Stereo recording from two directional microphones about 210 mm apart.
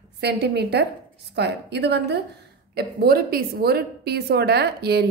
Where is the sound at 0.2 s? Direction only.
50° right (ahead or behind).